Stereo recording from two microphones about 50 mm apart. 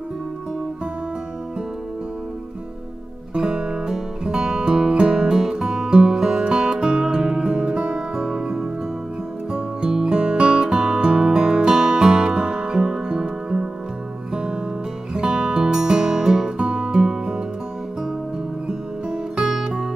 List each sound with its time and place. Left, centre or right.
3.3 s music: centre
18.7 s music: centre